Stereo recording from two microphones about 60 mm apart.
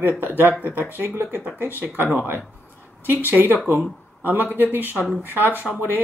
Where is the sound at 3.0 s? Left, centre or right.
Right.